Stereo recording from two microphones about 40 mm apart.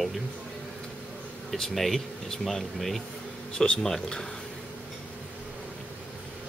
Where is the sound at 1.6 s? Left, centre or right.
Centre.